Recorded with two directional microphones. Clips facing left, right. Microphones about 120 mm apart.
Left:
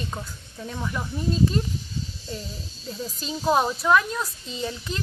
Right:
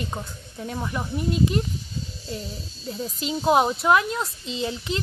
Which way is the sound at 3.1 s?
20° right (ahead or behind).